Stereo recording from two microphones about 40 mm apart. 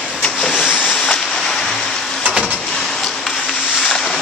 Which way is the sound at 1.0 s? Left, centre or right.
Centre.